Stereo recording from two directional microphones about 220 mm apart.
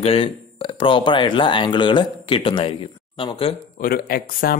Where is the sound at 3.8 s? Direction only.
40° left (ahead or behind).